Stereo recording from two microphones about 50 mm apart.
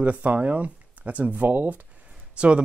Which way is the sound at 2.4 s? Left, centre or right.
Right.